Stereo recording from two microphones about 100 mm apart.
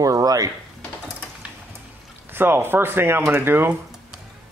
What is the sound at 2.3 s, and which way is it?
Speech, 20° right (ahead or behind).